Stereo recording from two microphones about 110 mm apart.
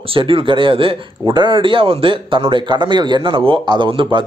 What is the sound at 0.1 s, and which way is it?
Speech, 55° right (ahead or behind).